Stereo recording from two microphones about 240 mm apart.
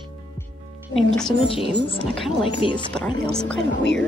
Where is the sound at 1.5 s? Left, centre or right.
Left.